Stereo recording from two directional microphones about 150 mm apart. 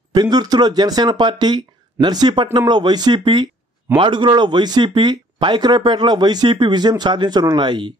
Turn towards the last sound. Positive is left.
turn(degrees=-30)  # may be behind; listen again after turning